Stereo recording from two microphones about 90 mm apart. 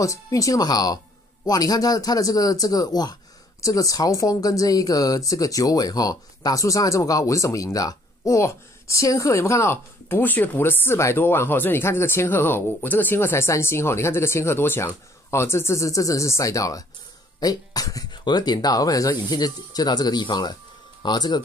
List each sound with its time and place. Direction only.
0.0 s speech: 40° left (ahead or behind)
18.1 s speech: 55° left (ahead or behind)